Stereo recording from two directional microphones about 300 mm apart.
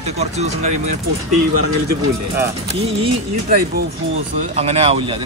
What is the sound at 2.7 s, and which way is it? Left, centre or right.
Speech, centre.